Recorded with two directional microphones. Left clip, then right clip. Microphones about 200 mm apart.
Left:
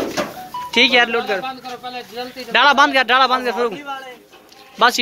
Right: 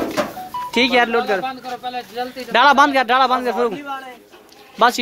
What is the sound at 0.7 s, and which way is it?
Speech, 10° right (ahead or behind).